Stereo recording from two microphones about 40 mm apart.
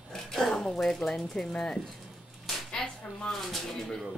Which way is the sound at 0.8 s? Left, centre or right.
Centre.